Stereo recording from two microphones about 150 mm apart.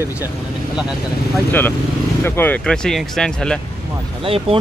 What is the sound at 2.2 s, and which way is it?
Speech, 10° left (ahead or behind).